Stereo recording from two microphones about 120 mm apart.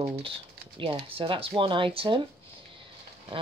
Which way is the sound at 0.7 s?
45° right (ahead or behind).